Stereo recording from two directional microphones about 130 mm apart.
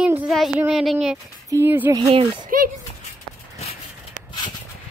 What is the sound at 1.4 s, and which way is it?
Speech, 20° right (ahead or behind).